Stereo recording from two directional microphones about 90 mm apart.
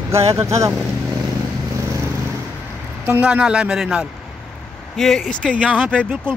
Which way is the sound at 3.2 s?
10° right (ahead or behind).